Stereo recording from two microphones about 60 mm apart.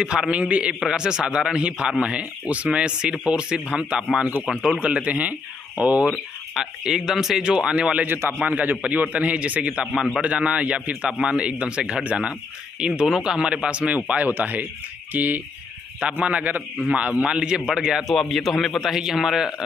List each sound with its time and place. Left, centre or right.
0.0 s a man's voice: centre
4.7 s a man's voice: right
6.0 s a man's voice: centre
18.1 s a man's voice: centre